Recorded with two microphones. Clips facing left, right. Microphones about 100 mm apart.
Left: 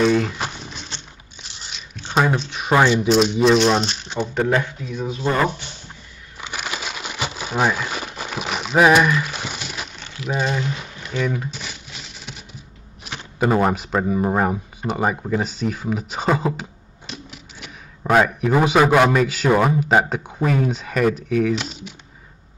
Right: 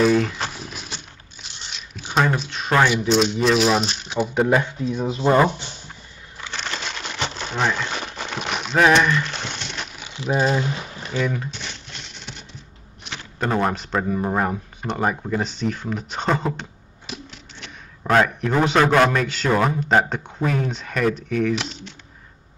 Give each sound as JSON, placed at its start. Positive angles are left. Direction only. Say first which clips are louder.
{"t": 0.0, "sound": "crumpling", "louder": "even", "side_deg": 0}
{"t": 2.1, "sound": "speech", "louder": "left 1 dB", "side_deg": 0}
{"t": 2.5, "sound": "a sound", "louder": "left 2 dB", "side_deg": 15}
{"t": 3.0, "sound": "speech", "louder": "left 3 dB", "side_deg": 0}
{"t": 4.8, "sound": "speech", "louder": "right 3 dB", "side_deg": -25}
{"t": 6.4, "sound": "crumpling", "louder": "left 1 dB", "side_deg": 10}
{"t": 10.6, "sound": "a sound", "louder": "right 1 dB", "side_deg": -35}
{"t": 11.1, "sound": "a sound", "louder": "left 1 dB", "side_deg": 0}
{"t": 13.1, "sound": "speech", "louder": "left 4 dB", "side_deg": 10}